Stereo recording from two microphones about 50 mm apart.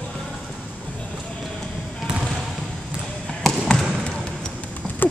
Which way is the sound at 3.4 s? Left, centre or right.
Centre.